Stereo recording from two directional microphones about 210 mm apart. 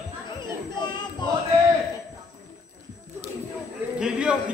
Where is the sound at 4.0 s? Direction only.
5° right (ahead or behind).